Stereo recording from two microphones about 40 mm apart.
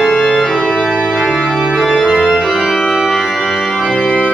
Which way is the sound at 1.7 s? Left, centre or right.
Centre.